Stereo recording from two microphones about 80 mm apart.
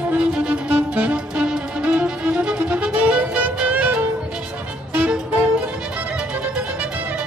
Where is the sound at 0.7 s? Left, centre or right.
Centre.